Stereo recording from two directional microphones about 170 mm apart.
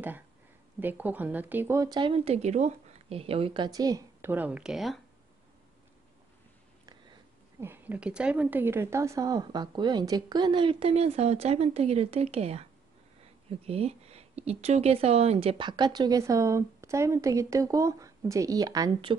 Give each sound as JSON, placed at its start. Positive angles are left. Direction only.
{"t": 0.7, "sound": "speech", "side_deg": -10}
{"t": 7.6, "sound": "speech", "side_deg": -10}
{"t": 13.7, "sound": "speech", "side_deg": -35}